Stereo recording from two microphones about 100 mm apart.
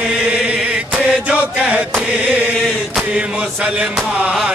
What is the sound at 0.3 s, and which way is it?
Chant, 15° right (ahead or behind).